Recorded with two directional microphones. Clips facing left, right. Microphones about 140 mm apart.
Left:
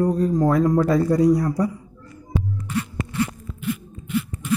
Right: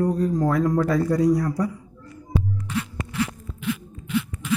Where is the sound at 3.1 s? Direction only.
90° right.